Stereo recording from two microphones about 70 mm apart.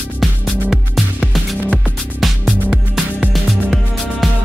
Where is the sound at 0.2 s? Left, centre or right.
Centre.